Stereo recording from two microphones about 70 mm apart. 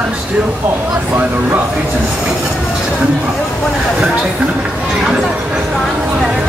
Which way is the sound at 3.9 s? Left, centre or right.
Centre.